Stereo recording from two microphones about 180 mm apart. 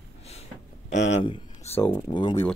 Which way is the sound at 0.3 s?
40° left (ahead or behind).